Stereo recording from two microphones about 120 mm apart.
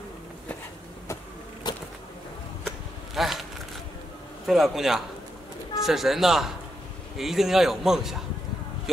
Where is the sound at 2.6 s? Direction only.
Centre (ahead or behind).